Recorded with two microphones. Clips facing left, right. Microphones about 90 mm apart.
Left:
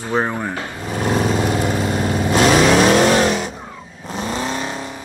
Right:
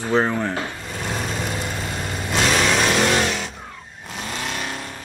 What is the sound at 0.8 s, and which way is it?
Vehicle, 45° left (ahead or behind).